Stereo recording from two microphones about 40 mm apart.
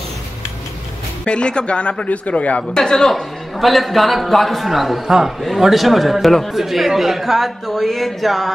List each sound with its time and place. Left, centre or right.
1.2 s a man's voice: left
2.7 s a man's voice: centre